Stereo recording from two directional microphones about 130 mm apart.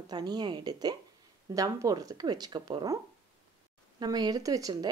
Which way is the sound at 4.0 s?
30° right (ahead or behind).